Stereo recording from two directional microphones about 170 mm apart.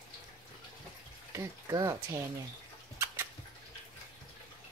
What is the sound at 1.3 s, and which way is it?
Speech, 15° right (ahead or behind).